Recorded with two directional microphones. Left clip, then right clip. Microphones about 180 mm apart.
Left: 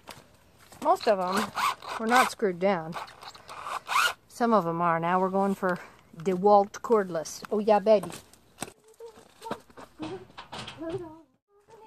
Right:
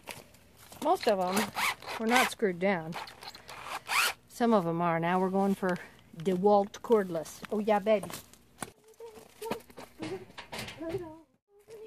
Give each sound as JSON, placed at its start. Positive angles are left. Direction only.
{"t": 0.8, "sound": "speech", "side_deg": -20}
{"t": 7.5, "sound": "speech", "side_deg": 20}